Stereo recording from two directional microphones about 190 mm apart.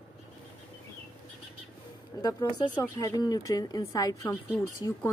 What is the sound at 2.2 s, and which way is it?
Speech, 20° left (ahead or behind).